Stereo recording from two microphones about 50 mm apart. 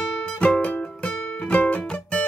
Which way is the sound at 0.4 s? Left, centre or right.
Left.